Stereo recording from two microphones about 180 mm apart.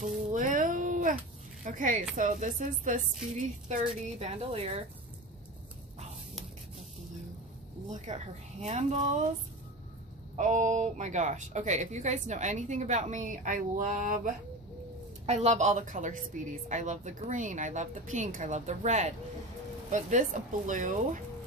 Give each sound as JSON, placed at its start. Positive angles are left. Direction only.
{"t": 0.0, "sound": "a sound", "side_deg": -45}
{"t": 1.6, "sound": "speech", "side_deg": -45}
{"t": 7.9, "sound": "speech", "side_deg": -40}
{"t": 10.3, "sound": "speech", "side_deg": -40}